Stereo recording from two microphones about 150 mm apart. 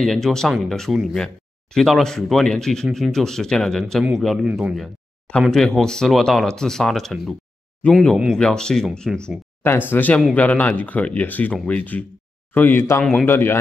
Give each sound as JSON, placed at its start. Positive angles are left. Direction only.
{"t": 0.0, "sound": "speech", "side_deg": 5}